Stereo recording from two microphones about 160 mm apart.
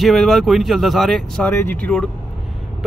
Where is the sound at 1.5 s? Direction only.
10° left (ahead or behind).